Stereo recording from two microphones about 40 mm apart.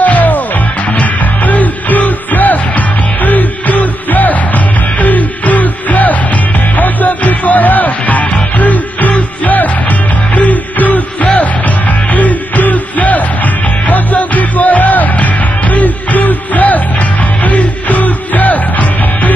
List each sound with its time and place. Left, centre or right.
0.0 s music: left
12.1 s music: left